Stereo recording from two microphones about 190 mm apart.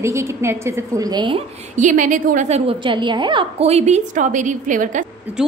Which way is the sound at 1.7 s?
40° right (ahead or behind).